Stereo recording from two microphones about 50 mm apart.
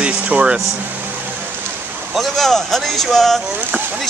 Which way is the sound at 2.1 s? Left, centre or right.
Centre.